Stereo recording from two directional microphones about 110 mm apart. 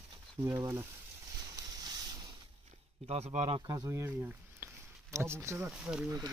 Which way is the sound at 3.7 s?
30° right (ahead or behind).